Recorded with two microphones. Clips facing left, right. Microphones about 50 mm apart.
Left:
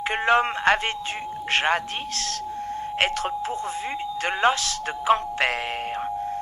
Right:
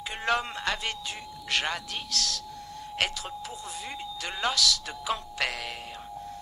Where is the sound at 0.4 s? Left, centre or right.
Left.